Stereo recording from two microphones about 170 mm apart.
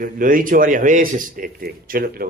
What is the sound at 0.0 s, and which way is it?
A man's voice, 55° right (ahead or behind).